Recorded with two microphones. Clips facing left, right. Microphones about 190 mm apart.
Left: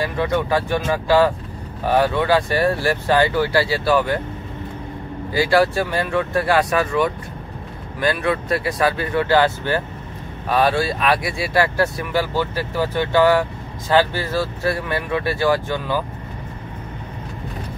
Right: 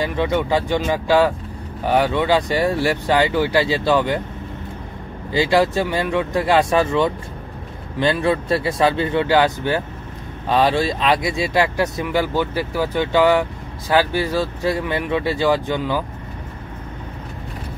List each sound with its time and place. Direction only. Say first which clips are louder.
0.0 s speech: right 1 dB; 20° right (ahead or behind)
5.3 s speech: even; 20° right (ahead or behind)